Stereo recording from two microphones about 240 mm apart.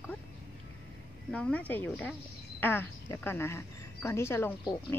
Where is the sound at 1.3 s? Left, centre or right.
Centre.